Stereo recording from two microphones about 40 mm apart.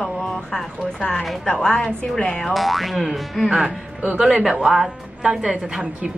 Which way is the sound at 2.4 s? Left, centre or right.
Centre.